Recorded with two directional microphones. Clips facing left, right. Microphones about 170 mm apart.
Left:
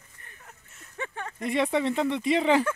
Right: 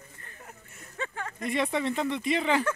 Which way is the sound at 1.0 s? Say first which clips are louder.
Left 1 dB; 20° left (ahead or behind).